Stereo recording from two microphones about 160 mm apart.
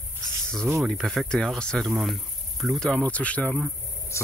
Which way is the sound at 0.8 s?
Centre (ahead or behind).